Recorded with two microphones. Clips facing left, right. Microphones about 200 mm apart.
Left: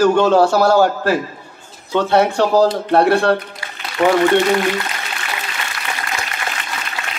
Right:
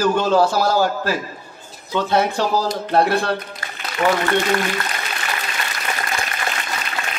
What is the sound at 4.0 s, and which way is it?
Speech, 40° left (ahead or behind).